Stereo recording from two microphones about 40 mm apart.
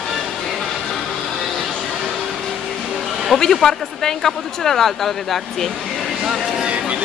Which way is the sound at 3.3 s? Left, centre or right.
Centre.